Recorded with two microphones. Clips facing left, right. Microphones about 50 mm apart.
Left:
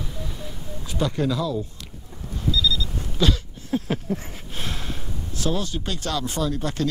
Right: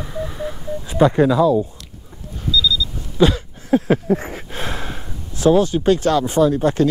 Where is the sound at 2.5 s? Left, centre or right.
Left.